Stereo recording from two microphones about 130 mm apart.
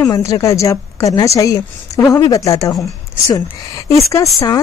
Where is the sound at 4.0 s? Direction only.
25° left (ahead or behind).